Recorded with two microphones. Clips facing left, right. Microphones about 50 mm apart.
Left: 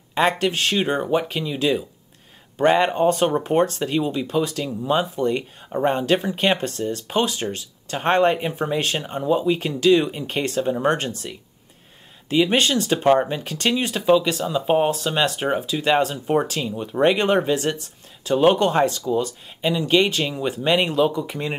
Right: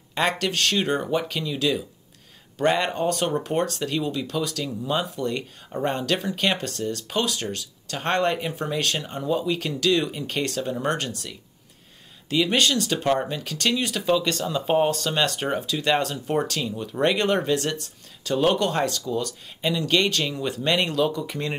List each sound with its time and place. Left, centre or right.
0.3 s speech: centre